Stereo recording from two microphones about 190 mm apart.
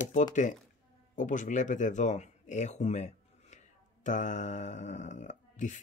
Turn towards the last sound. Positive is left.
turn(degrees=40)  # may be behind; listen again after turning